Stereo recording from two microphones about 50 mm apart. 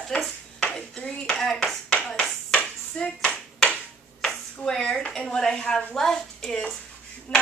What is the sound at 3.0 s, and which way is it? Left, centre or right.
Speech, centre.